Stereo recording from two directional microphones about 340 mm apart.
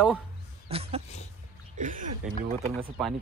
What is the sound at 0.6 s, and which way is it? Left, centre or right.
Speech, centre.